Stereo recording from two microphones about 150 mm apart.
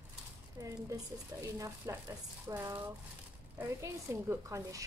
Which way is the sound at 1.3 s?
20° right (ahead or behind).